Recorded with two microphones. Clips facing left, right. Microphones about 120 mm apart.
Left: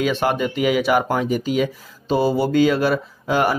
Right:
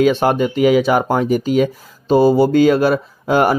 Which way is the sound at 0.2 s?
40° right (ahead or behind).